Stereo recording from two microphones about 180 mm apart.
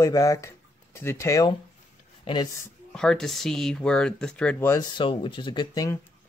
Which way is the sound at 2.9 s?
5° left (ahead or behind).